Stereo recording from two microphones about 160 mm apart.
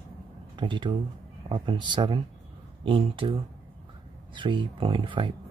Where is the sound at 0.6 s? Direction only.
30° right (ahead or behind).